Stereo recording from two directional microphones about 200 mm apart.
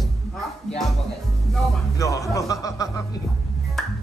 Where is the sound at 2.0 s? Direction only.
15° left (ahead or behind).